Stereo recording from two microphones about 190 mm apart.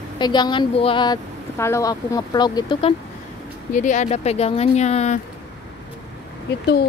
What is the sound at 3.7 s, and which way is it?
Speech, 40° left (ahead or behind).